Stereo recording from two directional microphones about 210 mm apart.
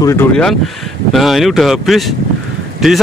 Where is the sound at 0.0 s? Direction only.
10° left (ahead or behind).